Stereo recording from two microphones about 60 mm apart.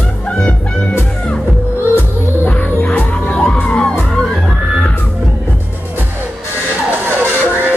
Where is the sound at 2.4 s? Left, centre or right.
Left.